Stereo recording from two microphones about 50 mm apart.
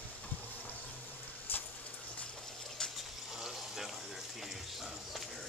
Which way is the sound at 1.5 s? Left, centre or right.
Left.